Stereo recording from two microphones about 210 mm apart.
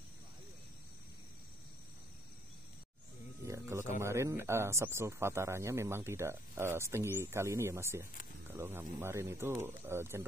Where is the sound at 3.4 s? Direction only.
15° right (ahead or behind).